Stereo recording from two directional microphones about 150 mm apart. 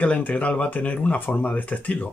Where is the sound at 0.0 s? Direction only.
10° left (ahead or behind).